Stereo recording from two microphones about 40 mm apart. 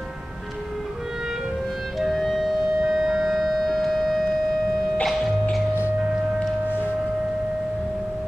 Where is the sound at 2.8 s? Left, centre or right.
Centre.